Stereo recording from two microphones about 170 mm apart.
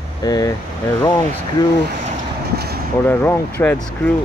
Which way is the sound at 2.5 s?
70° right (ahead or behind).